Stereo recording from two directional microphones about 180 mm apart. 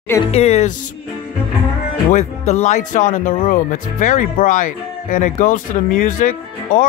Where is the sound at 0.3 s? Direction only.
35° left (ahead or behind).